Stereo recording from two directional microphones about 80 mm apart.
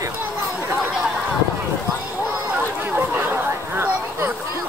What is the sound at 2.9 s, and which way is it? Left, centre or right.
Chatter, right.